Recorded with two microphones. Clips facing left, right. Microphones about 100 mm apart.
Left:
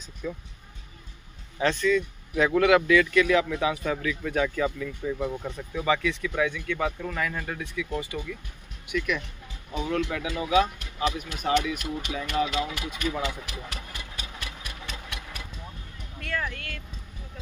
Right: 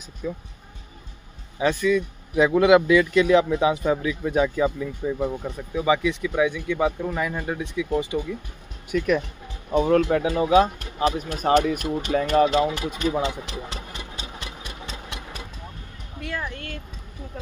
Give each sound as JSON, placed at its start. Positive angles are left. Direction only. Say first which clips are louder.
{"t": 0.2, "sound": "speech", "louder": "right 3 dB", "side_deg": -10}
{"t": 1.6, "sound": "speech", "louder": "right 3 dB", "side_deg": -10}
{"t": 8.8, "sound": "speech", "louder": "right 7 dB", "side_deg": -40}
{"t": 12.4, "sound": "engine", "louder": "right 8 dB", "side_deg": -35}
{"t": 16.2, "sound": "a sound", "louder": "right 1 dB", "side_deg": -15}
{"t": 16.5, "sound": "a sound", "louder": "right 4 dB", "side_deg": -30}